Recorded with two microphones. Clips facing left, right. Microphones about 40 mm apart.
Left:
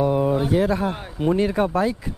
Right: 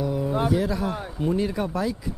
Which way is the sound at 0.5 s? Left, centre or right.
Left.